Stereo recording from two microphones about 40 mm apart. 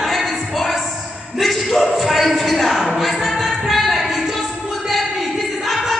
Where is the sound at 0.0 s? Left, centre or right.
Centre.